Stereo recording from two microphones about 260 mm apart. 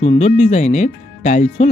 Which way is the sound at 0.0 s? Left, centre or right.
Left.